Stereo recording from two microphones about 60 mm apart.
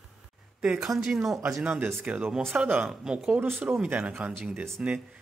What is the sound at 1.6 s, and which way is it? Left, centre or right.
Speech, right.